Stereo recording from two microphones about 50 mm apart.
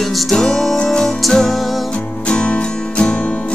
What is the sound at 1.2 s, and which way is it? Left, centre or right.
Music, centre.